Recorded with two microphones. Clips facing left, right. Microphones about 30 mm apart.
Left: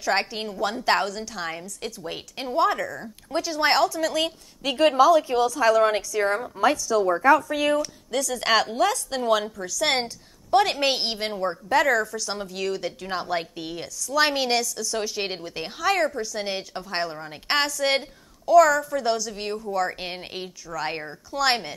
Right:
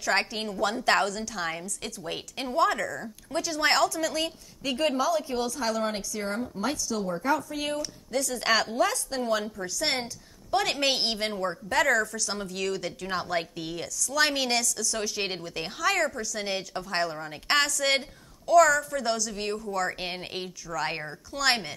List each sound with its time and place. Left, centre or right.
0.0 s a woman's voice: centre
4.2 s a woman's voice: left
5.6 s a woman's voice: left
7.1 s a woman's voice: left
8.5 s speech: left
8.7 s a woman's voice: left
9.8 s a woman's voice: left
10.7 s a woman's voice: centre